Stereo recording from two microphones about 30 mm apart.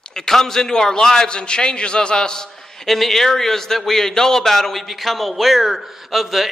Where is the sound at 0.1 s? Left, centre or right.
Centre.